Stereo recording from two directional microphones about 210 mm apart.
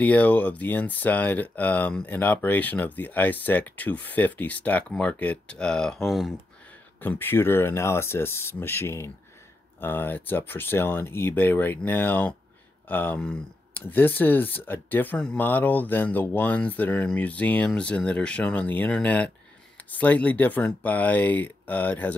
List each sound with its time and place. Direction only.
0.0 s speech: 5° left (ahead or behind)